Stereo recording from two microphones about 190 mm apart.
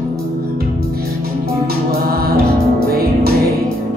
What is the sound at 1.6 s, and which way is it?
Music, 55° right (ahead or behind).